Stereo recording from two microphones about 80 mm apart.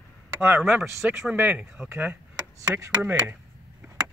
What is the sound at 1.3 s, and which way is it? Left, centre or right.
Speech, centre.